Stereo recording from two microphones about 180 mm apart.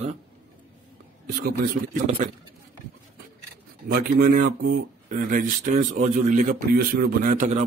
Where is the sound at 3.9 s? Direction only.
55° right (ahead or behind).